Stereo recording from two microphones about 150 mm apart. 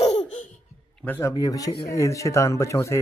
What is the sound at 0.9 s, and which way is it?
Speech, 15° left (ahead or behind).